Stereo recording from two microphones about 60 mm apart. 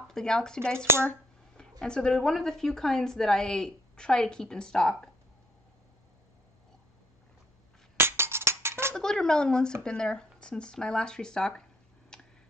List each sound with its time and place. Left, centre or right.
0.1 s a woman's voice: centre
0.7 s speech: right
1.6 s a woman's voice: centre
8.0 s a sound: right
8.9 s a woman's voice: centre
12.1 s a sound: centre